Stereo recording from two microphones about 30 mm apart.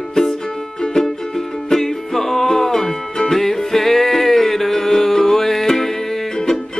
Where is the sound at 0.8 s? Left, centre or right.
Left.